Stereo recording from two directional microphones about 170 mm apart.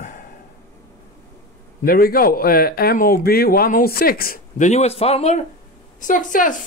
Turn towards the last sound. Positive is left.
turn(degrees=50)  # may be behind; listen again after turning